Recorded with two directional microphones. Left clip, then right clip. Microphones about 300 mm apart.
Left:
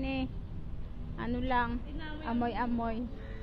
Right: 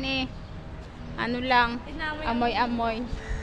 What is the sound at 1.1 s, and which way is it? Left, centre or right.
A man's voice, centre.